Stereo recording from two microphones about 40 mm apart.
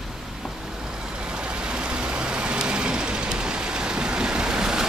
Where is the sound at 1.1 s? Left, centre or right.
Right.